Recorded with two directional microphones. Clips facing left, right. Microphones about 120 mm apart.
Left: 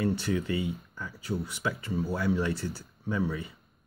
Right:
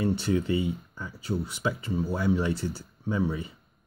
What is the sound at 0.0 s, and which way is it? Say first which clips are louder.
Speech: right 3 dB; 25° right (ahead or behind).